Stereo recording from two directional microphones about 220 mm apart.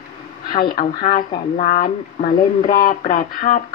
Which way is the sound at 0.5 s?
40° left (ahead or behind).